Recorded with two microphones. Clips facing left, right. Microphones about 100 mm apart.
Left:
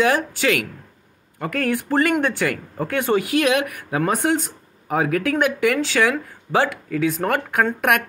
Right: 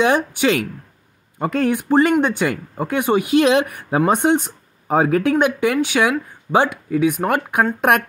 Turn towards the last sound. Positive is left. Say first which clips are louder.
# right 2 dB
turn(degrees=-15)  # may be behind; listen again after turning